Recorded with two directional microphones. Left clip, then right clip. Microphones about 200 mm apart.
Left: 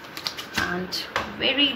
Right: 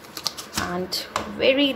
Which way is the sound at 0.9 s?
55° right (ahead or behind).